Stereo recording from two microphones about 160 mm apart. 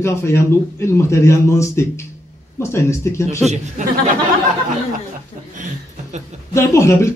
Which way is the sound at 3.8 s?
50° right (ahead or behind).